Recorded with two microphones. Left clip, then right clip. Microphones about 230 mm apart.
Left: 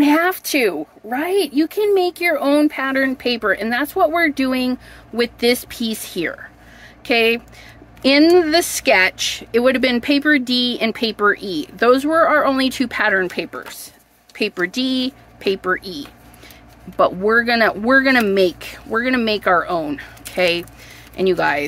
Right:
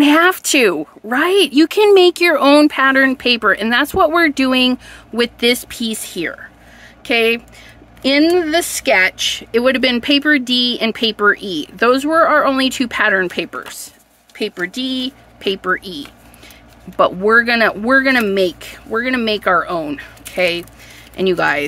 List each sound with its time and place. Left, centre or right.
0.0 s a woman's voice: centre
14.3 s speech: centre